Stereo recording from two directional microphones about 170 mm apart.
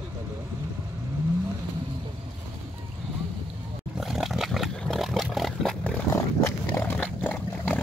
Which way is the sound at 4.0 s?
Centre (ahead or behind).